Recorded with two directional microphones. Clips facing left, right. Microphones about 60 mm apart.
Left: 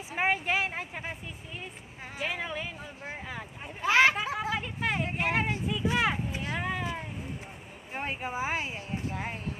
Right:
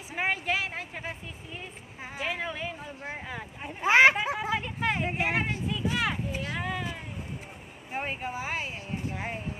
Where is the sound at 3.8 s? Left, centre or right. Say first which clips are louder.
Right 3 dB; right.